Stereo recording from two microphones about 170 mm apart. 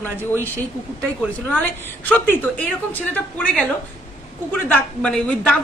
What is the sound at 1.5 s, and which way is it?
A woman's voice, 10° left (ahead or behind).